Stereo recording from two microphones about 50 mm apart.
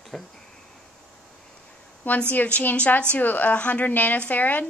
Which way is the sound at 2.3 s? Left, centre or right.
Left.